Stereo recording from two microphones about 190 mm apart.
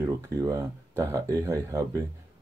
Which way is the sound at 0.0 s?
15° right (ahead or behind).